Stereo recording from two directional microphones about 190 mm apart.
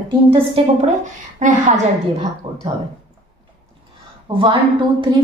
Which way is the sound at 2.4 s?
30° right (ahead or behind).